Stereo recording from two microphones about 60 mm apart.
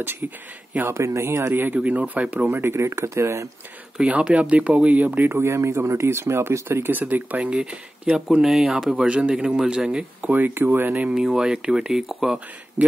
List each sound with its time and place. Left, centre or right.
0.8 s speech: right
2.5 s speech: right
4.1 s speech: right
5.4 s speech: right
6.9 s speech: right
10.3 s speech: right
11.1 s speech: centre
12.8 s speech: right